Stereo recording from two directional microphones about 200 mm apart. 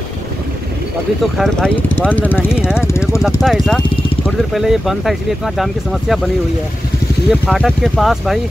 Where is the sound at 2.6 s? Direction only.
5° right (ahead or behind).